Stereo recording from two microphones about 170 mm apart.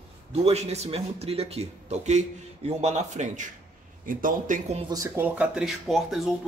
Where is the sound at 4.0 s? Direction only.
55° right (ahead or behind).